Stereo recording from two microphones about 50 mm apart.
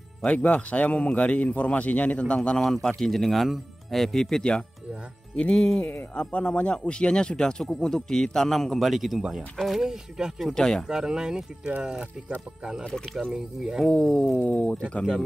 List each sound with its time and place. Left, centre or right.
0.3 s a man's voice: left
2.6 s a man's voice: centre
9.8 s speech: centre
10.5 s speech: centre
10.9 s speech: centre
11.6 s speech: right
12.8 s speech: centre
14.5 s a man's voice: left